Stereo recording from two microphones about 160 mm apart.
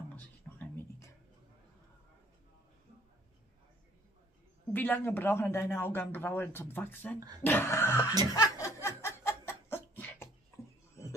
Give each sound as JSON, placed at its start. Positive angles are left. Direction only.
{"t": 0.1, "sound": "music", "side_deg": 10}
{"t": 4.7, "sound": "a man's voice", "side_deg": 10}
{"t": 8.3, "sound": "chuckle", "side_deg": 20}
{"t": 8.8, "sound": "laughter", "side_deg": 15}